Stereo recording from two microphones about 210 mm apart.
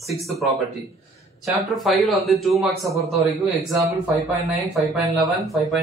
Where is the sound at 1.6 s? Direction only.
Centre (ahead or behind).